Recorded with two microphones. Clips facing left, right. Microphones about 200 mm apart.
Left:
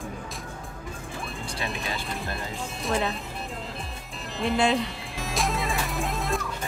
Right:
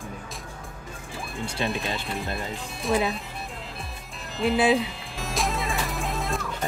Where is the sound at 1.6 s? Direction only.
Centre (ahead or behind).